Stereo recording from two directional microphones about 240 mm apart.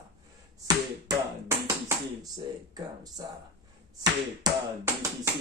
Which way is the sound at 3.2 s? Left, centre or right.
Centre.